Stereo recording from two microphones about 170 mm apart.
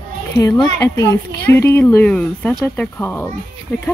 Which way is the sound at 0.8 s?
20° left (ahead or behind).